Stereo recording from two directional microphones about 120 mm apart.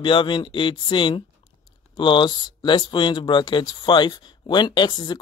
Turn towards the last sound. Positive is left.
turn(degrees=35)  # may be behind; listen again after turning